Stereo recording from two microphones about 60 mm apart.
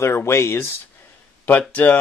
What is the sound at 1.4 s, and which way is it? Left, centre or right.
Speech, left.